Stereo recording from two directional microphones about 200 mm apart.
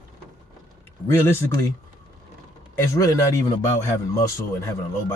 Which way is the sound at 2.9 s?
15° left (ahead or behind).